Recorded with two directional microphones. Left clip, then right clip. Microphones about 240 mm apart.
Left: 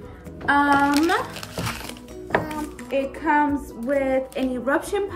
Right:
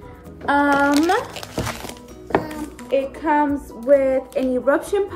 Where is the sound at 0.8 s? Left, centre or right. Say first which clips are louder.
Right 2 dB; right.